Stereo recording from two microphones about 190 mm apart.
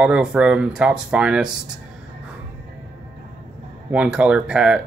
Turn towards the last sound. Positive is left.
turn(degrees=-5)  # may be behind; listen again after turning